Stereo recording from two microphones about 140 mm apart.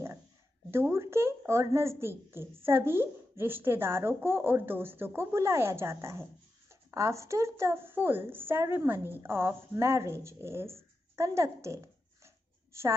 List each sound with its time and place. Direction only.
0.7 s a woman's voice: 20° right (ahead or behind)